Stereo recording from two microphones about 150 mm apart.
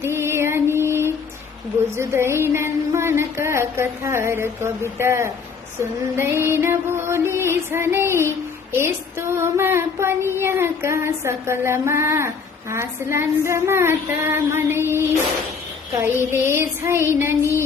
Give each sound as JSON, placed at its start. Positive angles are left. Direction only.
{"t": 0.0, "sound": "female singing", "side_deg": -15}
{"t": 2.0, "sound": "child singing", "side_deg": -15}
{"t": 16.3, "sound": "child singing", "side_deg": -15}